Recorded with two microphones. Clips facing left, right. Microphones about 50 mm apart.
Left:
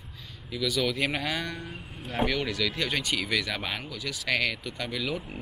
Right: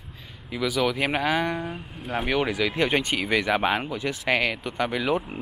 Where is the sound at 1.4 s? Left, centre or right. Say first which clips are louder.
Right 8 dB; right.